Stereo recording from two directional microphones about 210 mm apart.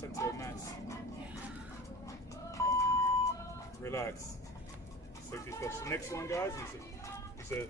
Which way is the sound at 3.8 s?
15° left (ahead or behind).